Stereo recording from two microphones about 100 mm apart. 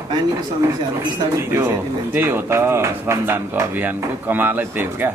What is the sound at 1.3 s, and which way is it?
Speech, 30° right (ahead or behind).